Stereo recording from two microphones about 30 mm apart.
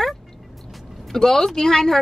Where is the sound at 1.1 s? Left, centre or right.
Centre.